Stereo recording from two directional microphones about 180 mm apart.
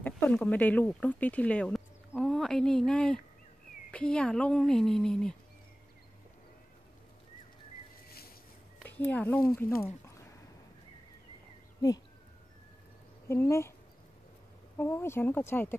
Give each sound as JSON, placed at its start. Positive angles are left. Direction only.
{"t": 0.0, "sound": "speech", "side_deg": 10}
{"t": 8.8, "sound": "speech", "side_deg": 10}
{"t": 13.3, "sound": "speech", "side_deg": 15}
{"t": 14.8, "sound": "speech", "side_deg": 10}